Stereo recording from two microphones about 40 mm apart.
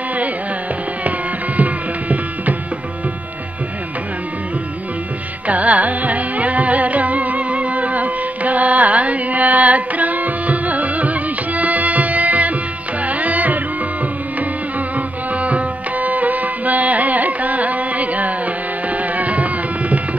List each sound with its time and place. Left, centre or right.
1.6 s music: right
5.5 s music: right
15.0 s music: right